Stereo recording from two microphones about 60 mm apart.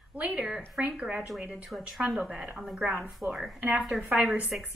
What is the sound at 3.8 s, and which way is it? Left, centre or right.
Speech, centre.